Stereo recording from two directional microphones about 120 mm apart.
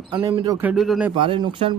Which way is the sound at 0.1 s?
40° right (ahead or behind).